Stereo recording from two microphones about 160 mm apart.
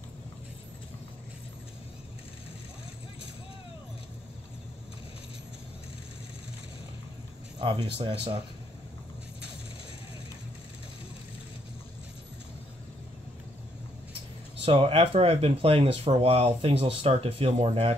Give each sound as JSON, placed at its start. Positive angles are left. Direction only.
{"t": 7.5, "sound": "speech", "side_deg": -30}
{"t": 14.6, "sound": "speech", "side_deg": -35}